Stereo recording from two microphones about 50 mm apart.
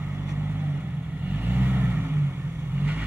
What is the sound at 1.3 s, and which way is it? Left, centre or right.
Vehicle, right.